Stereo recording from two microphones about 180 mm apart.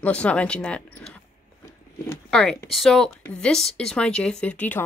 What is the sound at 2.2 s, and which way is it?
Speech, 5° left (ahead or behind).